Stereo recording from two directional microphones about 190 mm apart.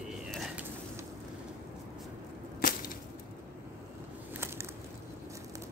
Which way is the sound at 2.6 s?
45° left (ahead or behind).